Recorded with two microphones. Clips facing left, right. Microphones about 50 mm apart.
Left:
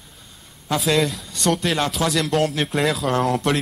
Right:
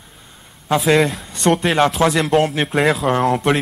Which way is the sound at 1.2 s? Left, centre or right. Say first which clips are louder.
Right 5 dB; right.